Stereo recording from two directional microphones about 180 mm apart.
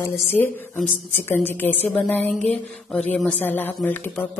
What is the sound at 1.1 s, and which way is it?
A woman's voice, 10° left (ahead or behind).